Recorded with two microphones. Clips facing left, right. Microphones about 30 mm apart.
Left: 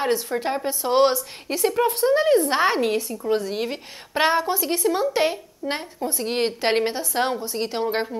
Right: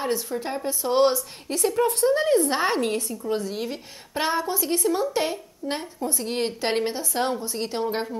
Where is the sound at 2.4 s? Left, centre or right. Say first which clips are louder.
Left 3 dB; left.